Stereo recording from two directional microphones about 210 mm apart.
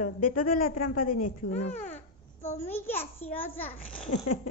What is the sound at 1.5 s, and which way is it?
Speech, 30° left (ahead or behind).